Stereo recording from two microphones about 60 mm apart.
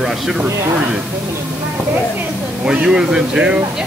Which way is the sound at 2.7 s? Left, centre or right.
Centre.